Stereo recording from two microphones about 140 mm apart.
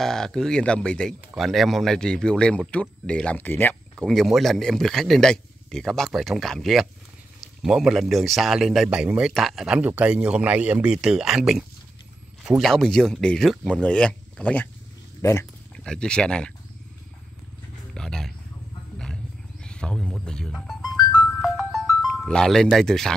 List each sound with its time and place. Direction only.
0.0 s speech: 5° left (ahead or behind)
4.1 s a man's voice: centre (ahead or behind)
15.2 s dog: 20° left (ahead or behind)
15.8 s speech: 5° left (ahead or behind)
17.9 s a sound: 5° left (ahead or behind)
19.6 s music: 5° left (ahead or behind)